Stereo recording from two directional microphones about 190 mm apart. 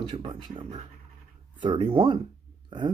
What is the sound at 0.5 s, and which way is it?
Speech, 35° right (ahead or behind).